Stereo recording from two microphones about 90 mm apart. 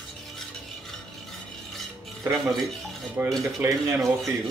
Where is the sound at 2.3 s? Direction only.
5° left (ahead or behind).